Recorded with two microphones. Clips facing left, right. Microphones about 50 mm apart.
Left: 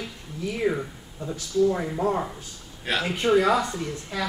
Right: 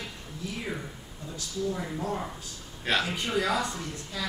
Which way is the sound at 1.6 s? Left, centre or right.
Left.